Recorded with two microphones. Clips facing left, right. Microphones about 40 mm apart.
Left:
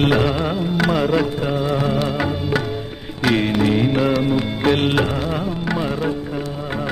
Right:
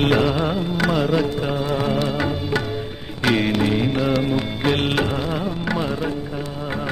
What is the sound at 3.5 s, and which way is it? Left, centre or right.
Music, centre.